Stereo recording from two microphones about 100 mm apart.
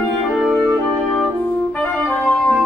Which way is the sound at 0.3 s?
Centre (ahead or behind).